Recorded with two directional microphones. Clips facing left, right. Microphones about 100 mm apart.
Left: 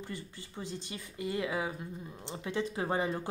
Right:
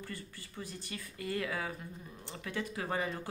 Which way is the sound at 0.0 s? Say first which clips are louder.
Left 3 dB; 20° left (ahead or behind).